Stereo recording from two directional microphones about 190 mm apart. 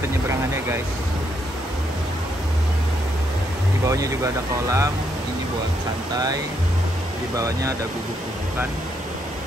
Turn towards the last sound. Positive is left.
turn(degrees=-15)  # may be behind; listen again after turning